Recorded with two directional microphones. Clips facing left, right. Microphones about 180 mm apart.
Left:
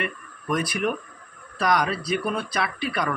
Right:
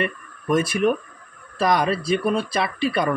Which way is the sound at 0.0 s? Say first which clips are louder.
Right 5 dB; 25° right (ahead or behind).